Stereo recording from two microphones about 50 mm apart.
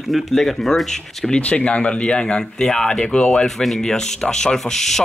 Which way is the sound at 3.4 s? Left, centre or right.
Centre.